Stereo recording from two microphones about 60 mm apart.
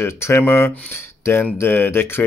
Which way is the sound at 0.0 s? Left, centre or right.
Left.